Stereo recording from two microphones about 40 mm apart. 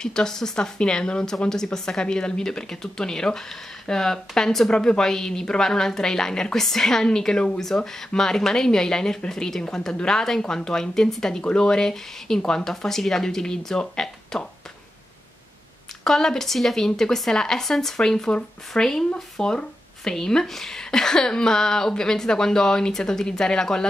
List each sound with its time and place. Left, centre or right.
0.0 s a woman's voice: centre
4.6 s a woman's voice: left
16.0 s a woman's voice: centre